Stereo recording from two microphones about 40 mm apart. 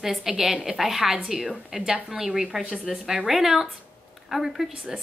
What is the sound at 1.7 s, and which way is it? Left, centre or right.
A woman's voice, right.